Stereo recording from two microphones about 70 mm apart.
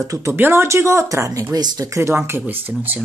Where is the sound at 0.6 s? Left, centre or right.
Right.